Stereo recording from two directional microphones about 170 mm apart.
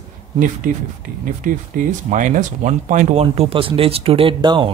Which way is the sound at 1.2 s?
50° right (ahead or behind).